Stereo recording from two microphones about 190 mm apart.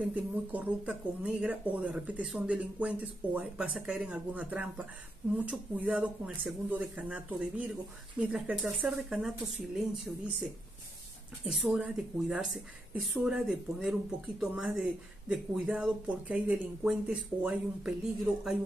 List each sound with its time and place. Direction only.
0.0 s speech: 10° right (ahead or behind)